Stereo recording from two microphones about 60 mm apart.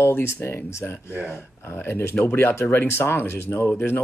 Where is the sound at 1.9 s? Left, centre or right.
Left.